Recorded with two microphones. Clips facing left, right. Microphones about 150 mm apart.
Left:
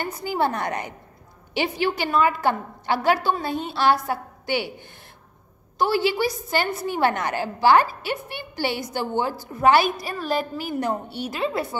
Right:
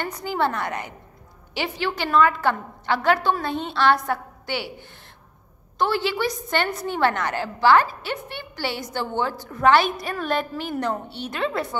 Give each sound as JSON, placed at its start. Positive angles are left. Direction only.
{"t": 0.2, "sound": "a woman's voice", "side_deg": 10}